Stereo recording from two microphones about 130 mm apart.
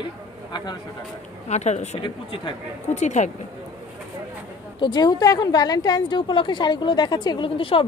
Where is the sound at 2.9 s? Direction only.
65° left (ahead or behind).